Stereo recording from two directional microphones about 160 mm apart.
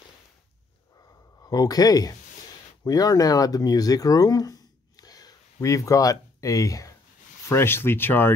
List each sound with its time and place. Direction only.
1.4 s speech: 25° left (ahead or behind)